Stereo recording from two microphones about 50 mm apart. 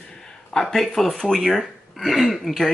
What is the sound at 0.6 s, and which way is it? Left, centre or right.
Speech, centre.